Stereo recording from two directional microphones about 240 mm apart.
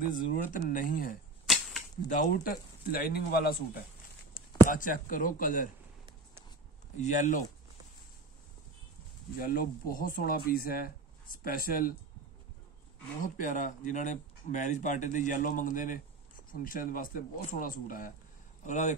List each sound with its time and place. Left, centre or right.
0.1 s speech: left
1.4 s a sound: centre
2.0 s speech: left
4.6 s speech: left
7.0 s speech: left
9.4 s speech: left
13.2 s speech: left